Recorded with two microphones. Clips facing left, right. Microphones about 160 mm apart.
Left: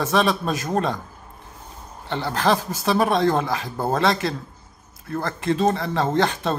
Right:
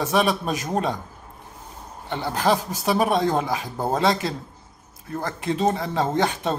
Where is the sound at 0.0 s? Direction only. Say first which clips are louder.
Left 1 dB; 15° right (ahead or behind).